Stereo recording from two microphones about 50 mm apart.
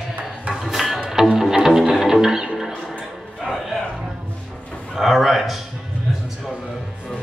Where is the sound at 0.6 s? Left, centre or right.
Centre.